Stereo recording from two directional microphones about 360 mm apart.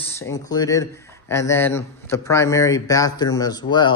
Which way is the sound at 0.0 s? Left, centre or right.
Centre.